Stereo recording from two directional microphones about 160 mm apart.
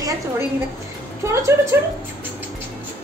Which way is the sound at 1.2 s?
20° right (ahead or behind).